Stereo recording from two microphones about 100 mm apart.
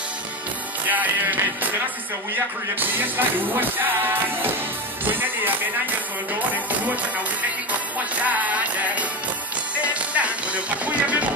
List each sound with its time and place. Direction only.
0.8 s music: 15° right (ahead or behind)
2.3 s speech: 20° right (ahead or behind)
5.0 s speech: 20° right (ahead or behind)
8.2 s music: 15° right (ahead or behind)